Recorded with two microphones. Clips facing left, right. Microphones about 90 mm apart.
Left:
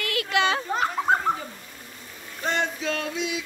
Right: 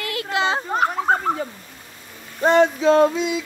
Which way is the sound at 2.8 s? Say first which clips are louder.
Right 13 dB; 35° right (ahead or behind).